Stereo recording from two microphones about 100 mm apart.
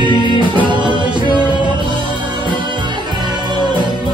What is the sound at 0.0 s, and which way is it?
Music, 50° right (ahead or behind).